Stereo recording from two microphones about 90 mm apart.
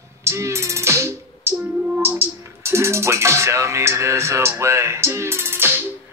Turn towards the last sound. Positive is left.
turn(degrees=-25)  # may be behind; listen again after turning